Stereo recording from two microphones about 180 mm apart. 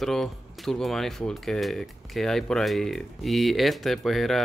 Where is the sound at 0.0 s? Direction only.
Centre (ahead or behind).